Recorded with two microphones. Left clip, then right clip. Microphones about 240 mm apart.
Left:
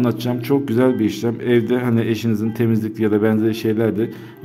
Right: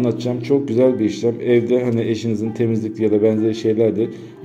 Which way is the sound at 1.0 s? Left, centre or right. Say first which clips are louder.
Right 2 dB; left.